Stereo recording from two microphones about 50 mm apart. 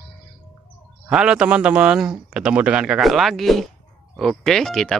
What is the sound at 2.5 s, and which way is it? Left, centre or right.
Speech, right.